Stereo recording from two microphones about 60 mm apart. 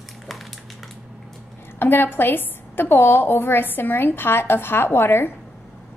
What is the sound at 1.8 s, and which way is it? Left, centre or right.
A woman's voice, left.